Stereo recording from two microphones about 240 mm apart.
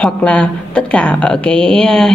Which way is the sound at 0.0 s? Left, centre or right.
Centre.